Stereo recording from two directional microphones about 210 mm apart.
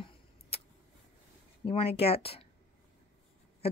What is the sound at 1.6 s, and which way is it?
Speech, 25° left (ahead or behind).